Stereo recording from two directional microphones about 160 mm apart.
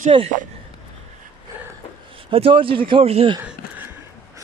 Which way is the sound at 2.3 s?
35° right (ahead or behind).